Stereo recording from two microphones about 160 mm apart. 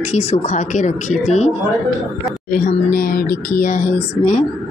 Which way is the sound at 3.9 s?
45° left (ahead or behind).